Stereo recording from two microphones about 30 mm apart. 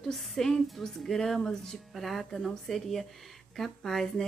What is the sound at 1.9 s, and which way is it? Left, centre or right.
A woman's voice, centre.